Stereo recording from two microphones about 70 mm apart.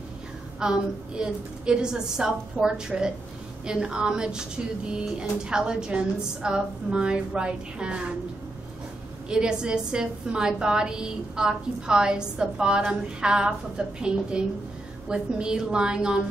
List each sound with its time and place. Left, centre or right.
0.6 s speech: centre
9.3 s speech: centre